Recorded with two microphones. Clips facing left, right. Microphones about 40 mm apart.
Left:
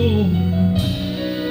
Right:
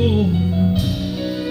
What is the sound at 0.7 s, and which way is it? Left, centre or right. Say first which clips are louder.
Music: even; left.